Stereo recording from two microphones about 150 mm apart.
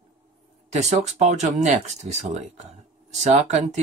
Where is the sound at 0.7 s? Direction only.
50° right (ahead or behind).